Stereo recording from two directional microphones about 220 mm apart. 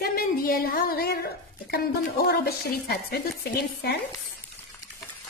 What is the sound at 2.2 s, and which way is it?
A woman's voice, 45° left (ahead or behind).